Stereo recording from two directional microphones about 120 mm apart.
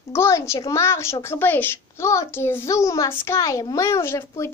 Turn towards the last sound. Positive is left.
turn(degrees=25)  # may be behind; listen again after turning